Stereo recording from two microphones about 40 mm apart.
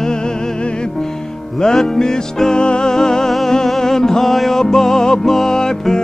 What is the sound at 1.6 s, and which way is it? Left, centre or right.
Music, centre.